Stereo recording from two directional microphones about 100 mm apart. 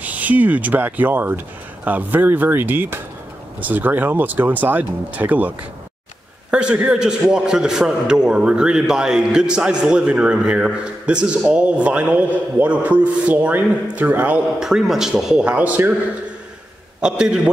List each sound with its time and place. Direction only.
0.0 s a man's voice: 15° right (ahead or behind)
6.5 s a man's voice: 10° right (ahead or behind)
14.6 s speech: 5° right (ahead or behind)
17.0 s a man's voice: 10° right (ahead or behind)